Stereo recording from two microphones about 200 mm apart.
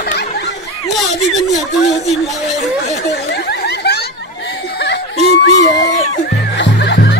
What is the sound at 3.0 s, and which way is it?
Snicker, 55° left (ahead or behind).